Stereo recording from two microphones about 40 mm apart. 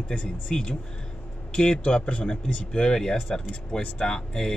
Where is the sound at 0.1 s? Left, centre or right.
Left.